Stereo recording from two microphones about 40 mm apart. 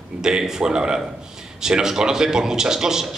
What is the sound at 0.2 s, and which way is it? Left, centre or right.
A man's voice, centre.